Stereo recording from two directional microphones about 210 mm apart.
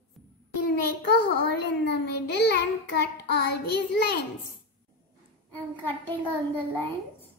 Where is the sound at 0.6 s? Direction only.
50° left (ahead or behind).